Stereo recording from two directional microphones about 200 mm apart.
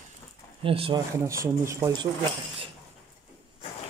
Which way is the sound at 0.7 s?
25° right (ahead or behind).